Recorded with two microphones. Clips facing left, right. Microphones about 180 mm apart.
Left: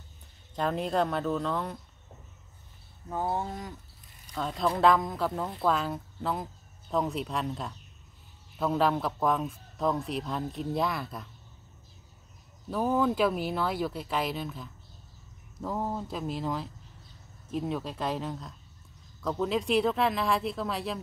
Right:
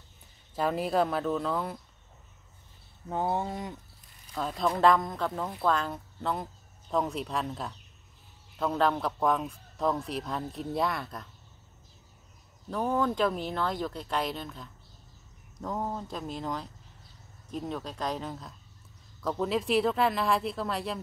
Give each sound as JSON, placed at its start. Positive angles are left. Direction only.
{"t": 0.6, "sound": "speech", "side_deg": -5}
{"t": 3.1, "sound": "speech", "side_deg": -20}
{"t": 4.3, "sound": "speech", "side_deg": -5}
{"t": 12.6, "sound": "speech", "side_deg": 5}